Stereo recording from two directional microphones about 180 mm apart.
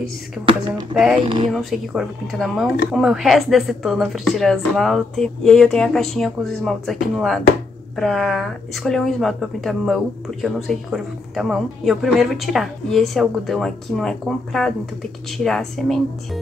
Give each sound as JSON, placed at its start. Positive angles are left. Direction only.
{"t": 0.9, "sound": "speech", "side_deg": 0}
{"t": 1.2, "sound": "speech", "side_deg": -30}
{"t": 1.5, "sound": "speech", "side_deg": 0}